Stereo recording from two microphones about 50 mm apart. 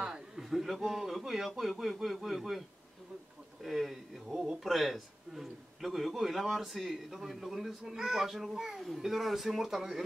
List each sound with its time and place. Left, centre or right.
0.4 s a man's voice: centre
3.6 s a man's voice: centre